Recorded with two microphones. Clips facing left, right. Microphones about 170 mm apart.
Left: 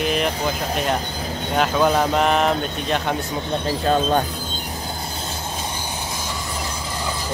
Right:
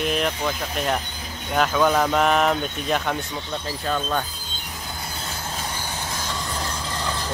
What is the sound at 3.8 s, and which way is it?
Speech, 35° left (ahead or behind).